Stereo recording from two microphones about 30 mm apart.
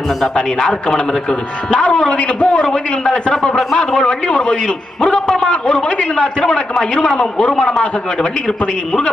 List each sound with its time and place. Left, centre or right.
0.6 s a man's voice: left
1.7 s a man's voice: left
5.2 s a man's voice: centre
5.9 s a man's voice: left